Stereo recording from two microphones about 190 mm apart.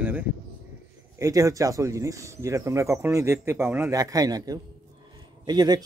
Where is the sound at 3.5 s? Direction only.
5° right (ahead or behind).